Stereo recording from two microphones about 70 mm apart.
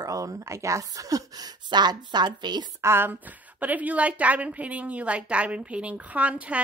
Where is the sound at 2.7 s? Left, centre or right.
Right.